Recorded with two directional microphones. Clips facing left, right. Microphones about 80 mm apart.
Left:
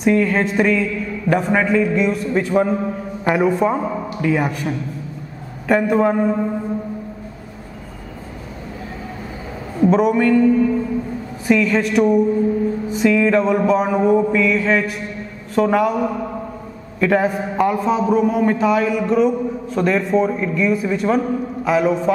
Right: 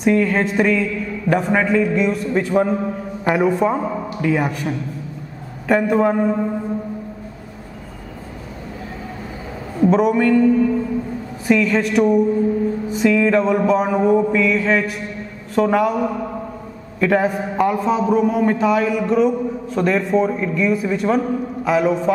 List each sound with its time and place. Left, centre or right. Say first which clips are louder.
0.0 s a man's voice: even; centre
9.8 s a man's voice: even; centre